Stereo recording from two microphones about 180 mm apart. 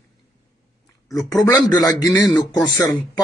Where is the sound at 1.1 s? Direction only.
20° left (ahead or behind).